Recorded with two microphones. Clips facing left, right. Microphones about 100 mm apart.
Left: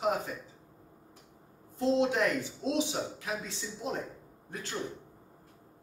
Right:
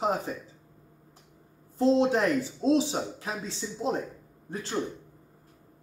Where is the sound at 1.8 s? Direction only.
35° right (ahead or behind).